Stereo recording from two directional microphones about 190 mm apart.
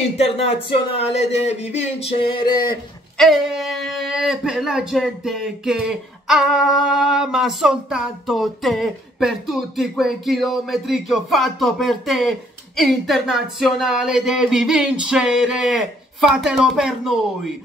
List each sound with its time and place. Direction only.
0.2 s speech: 30° left (ahead or behind)
3.2 s speech: centre (ahead or behind)